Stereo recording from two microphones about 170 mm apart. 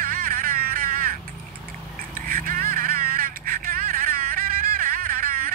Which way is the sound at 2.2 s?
55° right (ahead or behind).